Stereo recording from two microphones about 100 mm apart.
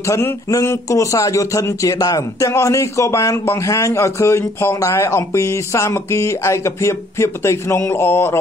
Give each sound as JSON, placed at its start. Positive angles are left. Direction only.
{"t": 0.0, "sound": "a man's voice", "side_deg": 30}